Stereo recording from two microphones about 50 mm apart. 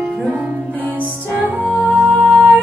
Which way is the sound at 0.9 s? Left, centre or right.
Right.